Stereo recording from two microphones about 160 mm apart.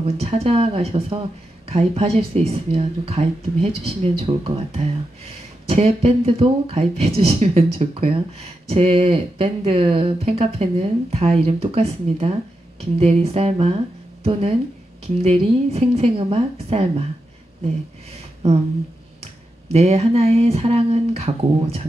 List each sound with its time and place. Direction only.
0.0 s speech: 40° right (ahead or behind)
19.7 s speech: 40° right (ahead or behind)